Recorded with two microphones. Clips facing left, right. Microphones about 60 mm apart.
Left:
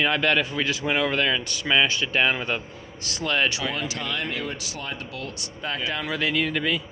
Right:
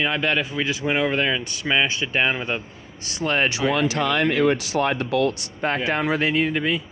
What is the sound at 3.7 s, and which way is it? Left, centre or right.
Speech, right.